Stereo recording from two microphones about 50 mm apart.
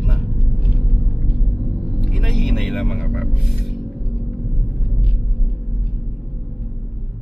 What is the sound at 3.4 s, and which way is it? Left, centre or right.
Music, centre.